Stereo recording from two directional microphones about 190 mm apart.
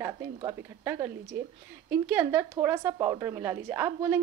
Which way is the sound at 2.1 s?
15° right (ahead or behind).